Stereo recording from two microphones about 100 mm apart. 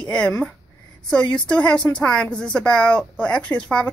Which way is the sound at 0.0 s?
10° left (ahead or behind).